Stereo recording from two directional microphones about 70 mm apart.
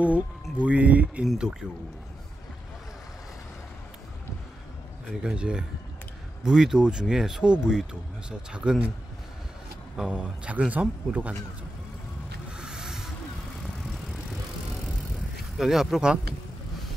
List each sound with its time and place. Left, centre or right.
0.0 s speech: centre
1.2 s speech: centre
5.2 s speech: centre
9.9 s speech: centre
12.5 s a sound: centre
15.5 s speech: centre